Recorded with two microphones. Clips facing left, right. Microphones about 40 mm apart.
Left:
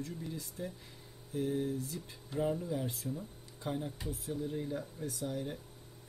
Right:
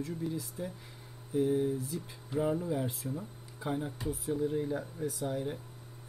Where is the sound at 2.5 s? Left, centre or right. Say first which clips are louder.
Right 4 dB; right.